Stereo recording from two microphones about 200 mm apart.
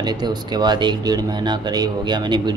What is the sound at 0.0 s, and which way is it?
Speech, 20° right (ahead or behind).